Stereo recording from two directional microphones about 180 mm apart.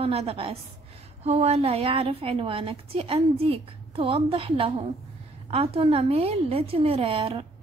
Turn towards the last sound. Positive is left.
turn(degrees=-30)  # may be behind; listen again after turning